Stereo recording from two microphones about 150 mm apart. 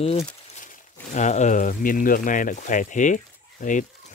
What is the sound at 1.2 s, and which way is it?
Speech, 50° left (ahead or behind).